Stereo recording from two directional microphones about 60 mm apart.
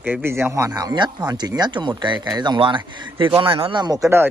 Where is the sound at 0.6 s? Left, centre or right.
Right.